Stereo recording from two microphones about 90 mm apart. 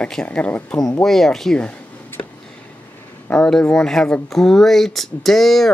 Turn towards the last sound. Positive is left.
turn(degrees=5)  # may be behind; listen again after turning